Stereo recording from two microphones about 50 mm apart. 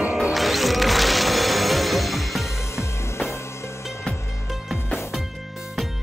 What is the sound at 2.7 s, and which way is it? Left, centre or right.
Music, left.